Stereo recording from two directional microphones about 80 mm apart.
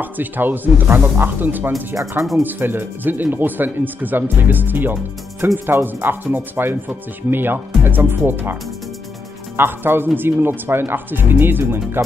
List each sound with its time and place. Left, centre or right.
0.0 s speech: right
9.6 s speech: right